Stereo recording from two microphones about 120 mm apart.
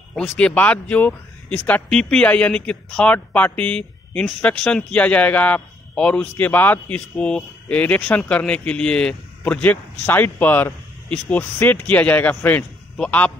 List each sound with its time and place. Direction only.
0.1 s speech: 5° left (ahead or behind)